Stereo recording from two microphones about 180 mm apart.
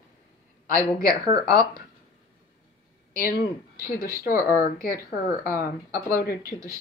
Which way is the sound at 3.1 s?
55° left (ahead or behind).